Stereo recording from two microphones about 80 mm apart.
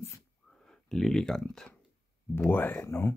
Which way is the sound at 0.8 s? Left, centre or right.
Centre.